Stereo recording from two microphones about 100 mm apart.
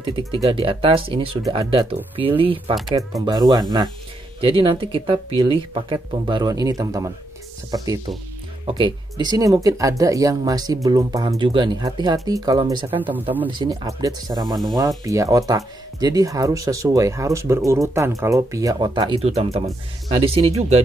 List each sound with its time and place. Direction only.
0.0 s speech: 60° right (ahead or behind)
3.0 s speech: 35° right (ahead or behind)
4.4 s speech: 60° right (ahead or behind); by 8.0 s 40° right (ahead or behind)
8.6 s speech: 55° right (ahead or behind)
11.3 s speech: 50° right (ahead or behind)
12.9 s speech: 15° right (ahead or behind)
13.7 s speech: 35° right (ahead or behind)
18.8 s speech: 55° right (ahead or behind)
19.1 s speech: 90° right